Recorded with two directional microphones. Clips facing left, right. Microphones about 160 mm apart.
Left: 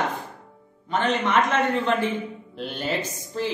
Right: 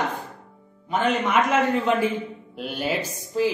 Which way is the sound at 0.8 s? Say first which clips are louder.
Right 1 dB; 10° right (ahead or behind).